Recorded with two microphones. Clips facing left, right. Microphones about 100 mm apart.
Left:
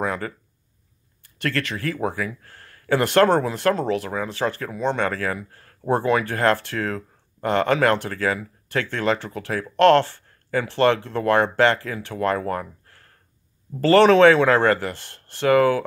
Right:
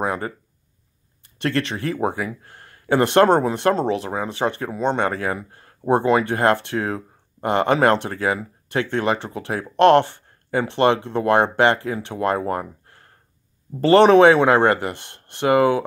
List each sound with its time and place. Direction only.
0.0 s speech: 20° right (ahead or behind)